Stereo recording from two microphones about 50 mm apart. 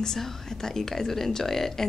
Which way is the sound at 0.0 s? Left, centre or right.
Centre.